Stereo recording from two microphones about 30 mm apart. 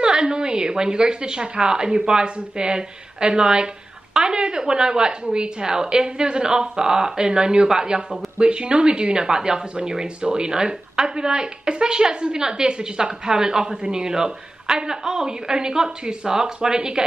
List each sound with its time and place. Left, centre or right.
0.0 s a woman's voice: right